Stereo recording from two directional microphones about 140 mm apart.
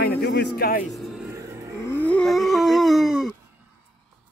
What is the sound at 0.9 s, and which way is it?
Vehicle, centre (ahead or behind).